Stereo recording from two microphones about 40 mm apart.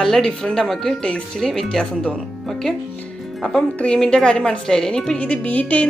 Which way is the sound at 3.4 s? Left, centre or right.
Centre.